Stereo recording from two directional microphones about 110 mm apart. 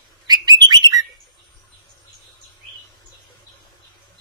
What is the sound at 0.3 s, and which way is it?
Bird, 40° right (ahead or behind).